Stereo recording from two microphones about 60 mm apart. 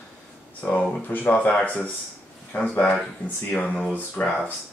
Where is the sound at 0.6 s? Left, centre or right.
Left.